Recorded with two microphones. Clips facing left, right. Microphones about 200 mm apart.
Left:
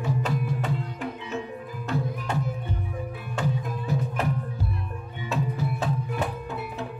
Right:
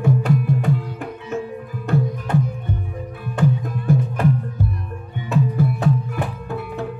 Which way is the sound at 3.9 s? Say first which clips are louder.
Right 10 dB; 55° right (ahead or behind).